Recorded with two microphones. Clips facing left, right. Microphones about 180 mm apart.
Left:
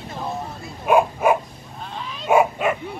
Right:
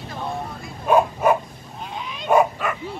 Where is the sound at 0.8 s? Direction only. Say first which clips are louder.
Even; 10° left (ahead or behind).